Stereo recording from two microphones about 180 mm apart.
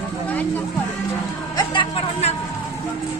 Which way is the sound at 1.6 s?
30° left (ahead or behind).